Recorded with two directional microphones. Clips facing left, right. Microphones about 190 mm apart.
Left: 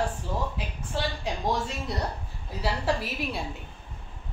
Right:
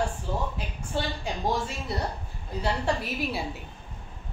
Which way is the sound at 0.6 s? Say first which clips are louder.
Even; centre (ahead or behind).